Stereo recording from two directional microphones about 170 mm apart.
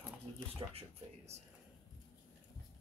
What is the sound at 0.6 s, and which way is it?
Speech, 35° right (ahead or behind).